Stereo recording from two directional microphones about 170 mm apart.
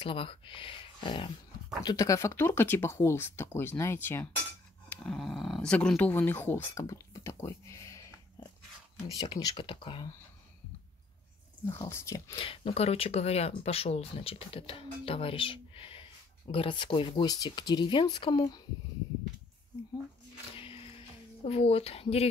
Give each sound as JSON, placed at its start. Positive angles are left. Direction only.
{"t": 0.0, "sound": "speech", "side_deg": 30}
{"t": 11.6, "sound": "speech", "side_deg": 15}
{"t": 12.4, "sound": "speech", "side_deg": 30}
{"t": 20.5, "sound": "music", "side_deg": 35}
{"t": 21.5, "sound": "speech", "side_deg": 35}